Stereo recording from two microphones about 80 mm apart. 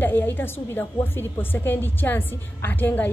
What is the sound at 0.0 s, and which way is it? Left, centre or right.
A woman's voice, left.